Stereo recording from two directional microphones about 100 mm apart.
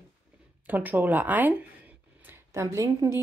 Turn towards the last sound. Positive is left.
turn(degrees=-30)  # may be behind; listen again after turning